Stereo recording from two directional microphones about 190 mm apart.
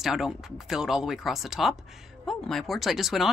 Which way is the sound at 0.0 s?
Centre (ahead or behind).